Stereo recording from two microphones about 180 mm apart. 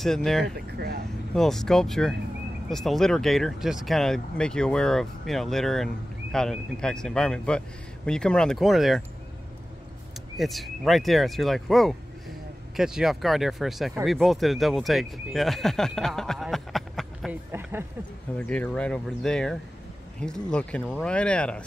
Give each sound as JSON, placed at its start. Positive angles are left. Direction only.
{"t": 0.0, "sound": "speech", "side_deg": 5}
{"t": 0.6, "sound": "speech", "side_deg": -60}
{"t": 1.3, "sound": "speech", "side_deg": 0}
{"t": 10.3, "sound": "speech", "side_deg": 0}
{"t": 17.5, "sound": "speech", "side_deg": -15}
{"t": 18.4, "sound": "speech", "side_deg": 10}